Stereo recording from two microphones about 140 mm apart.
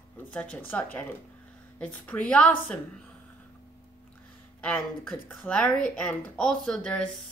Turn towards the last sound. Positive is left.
turn(degrees=5)  # may be behind; listen again after turning